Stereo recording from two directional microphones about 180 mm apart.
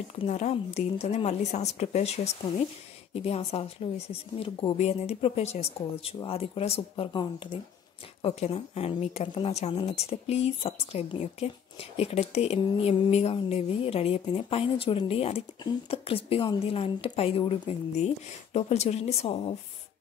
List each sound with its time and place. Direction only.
0.1 s speech: 40° left (ahead or behind)